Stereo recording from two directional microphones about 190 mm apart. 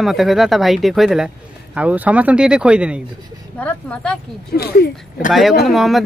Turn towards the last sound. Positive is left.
turn(degrees=0)  # may be behind; listen again after turning